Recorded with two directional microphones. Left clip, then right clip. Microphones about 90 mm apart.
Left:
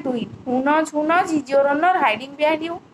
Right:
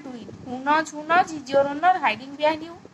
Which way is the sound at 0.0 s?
25° left (ahead or behind).